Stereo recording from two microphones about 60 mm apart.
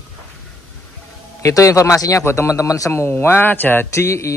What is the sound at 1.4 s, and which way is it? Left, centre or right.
Speech, left.